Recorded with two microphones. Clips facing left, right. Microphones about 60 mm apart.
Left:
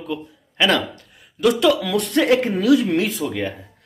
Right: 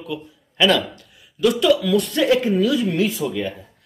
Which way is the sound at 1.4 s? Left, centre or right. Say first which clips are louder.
Even; left.